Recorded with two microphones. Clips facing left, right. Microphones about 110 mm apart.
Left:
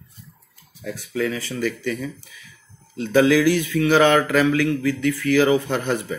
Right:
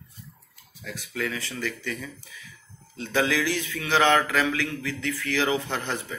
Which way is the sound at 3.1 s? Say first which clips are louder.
Left 9 dB; 10° left (ahead or behind).